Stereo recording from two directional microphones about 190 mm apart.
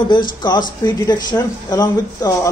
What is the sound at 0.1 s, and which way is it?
Speech, 25° left (ahead or behind).